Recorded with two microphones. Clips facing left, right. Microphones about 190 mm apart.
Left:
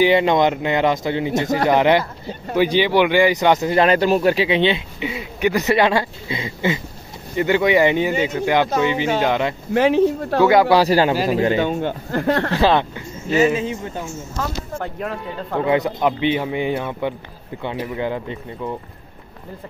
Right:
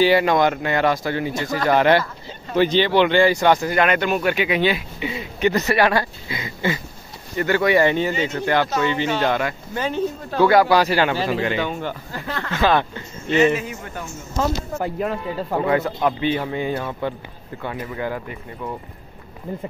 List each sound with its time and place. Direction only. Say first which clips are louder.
0.0 s speech: left 1 dB; 20° left (ahead or behind)
3.8 s speech: left 4 dB; 35° left (ahead or behind)
5.1 s speech: even; 10° left (ahead or behind)
9.8 s speech: left 9 dB; 75° left (ahead or behind)
10.4 s speech: left 1 dB; 20° left (ahead or behind); by 11.6 s 40° left (ahead or behind)
11.6 s speech: left 5 dB; 20° left (ahead or behind)
12.1 s speech: left 10 dB; 65° left (ahead or behind)
12.4 s speech: right 2 dB; 35° left (ahead or behind)
13.3 s speech: even; 5° left (ahead or behind)
13.6 s speech: left 6 dB; 25° left (ahead or behind)
14.8 s speech: right 2 dB; 5° right (ahead or behind)
15.6 s speech: left 3 dB; 15° left (ahead or behind)